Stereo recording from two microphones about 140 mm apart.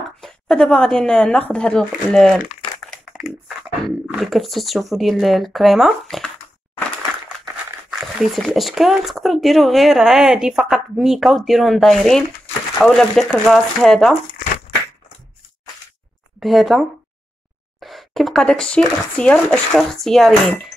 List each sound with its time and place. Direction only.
0.2 s speech: 5° left (ahead or behind)
3.1 s a sound: centre (ahead or behind)
4.2 s speech: centre (ahead or behind)
7.9 s speech: centre (ahead or behind)
16.3 s speech: centre (ahead or behind)